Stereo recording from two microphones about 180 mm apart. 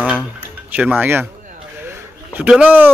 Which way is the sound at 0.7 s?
10° right (ahead or behind).